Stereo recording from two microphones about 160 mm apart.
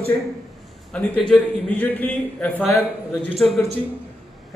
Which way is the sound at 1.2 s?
5° left (ahead or behind).